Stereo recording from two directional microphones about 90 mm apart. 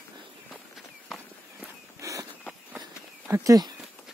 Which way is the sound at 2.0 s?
35° right (ahead or behind).